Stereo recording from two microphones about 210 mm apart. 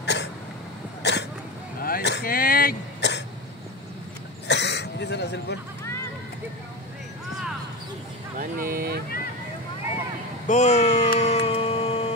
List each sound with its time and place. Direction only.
0.0 s cough: 55° left (ahead or behind)
1.0 s a sound: 55° left (ahead or behind)
1.8 s throat clearing: 45° left (ahead or behind)
4.5 s throat clearing: 55° left (ahead or behind)
8.4 s speech: 45° right (ahead or behind)
10.4 s a sound: 35° left (ahead or behind)